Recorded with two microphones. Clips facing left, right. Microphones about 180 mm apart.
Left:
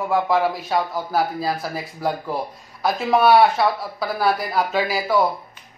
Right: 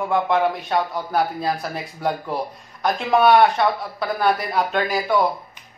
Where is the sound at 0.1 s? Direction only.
5° left (ahead or behind).